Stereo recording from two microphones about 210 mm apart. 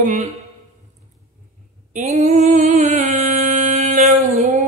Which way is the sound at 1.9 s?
30° right (ahead or behind).